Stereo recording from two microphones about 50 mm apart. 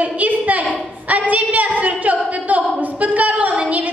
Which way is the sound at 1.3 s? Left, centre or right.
Right.